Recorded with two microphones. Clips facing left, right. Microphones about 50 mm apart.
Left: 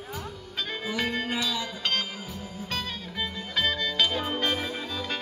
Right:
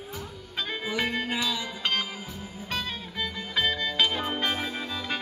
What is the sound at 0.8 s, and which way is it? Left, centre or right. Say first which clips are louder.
Music: even; centre.